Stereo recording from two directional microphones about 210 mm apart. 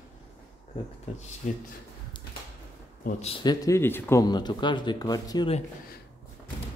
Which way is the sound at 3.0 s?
30° left (ahead or behind).